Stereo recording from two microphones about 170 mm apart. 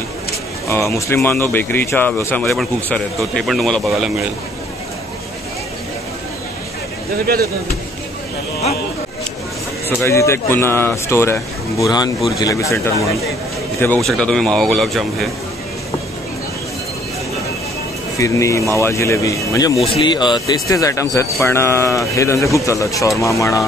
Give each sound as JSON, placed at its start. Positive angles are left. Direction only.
{"t": 0.7, "sound": "speech", "side_deg": 15}
{"t": 2.4, "sound": "speech", "side_deg": 0}
{"t": 9.8, "sound": "speech", "side_deg": 15}
{"t": 14.0, "sound": "speech", "side_deg": 5}
{"t": 18.2, "sound": "speech", "side_deg": 20}